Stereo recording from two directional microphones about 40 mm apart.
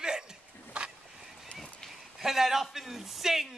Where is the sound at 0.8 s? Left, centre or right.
Right.